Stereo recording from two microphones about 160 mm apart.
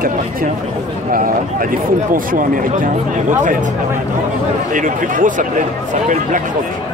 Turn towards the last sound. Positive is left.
turn(degrees=-55)  # may be behind; listen again after turning